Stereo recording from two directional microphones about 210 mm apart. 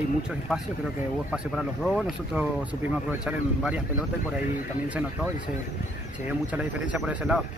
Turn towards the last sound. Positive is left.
turn(degrees=-5)  # may be behind; listen again after turning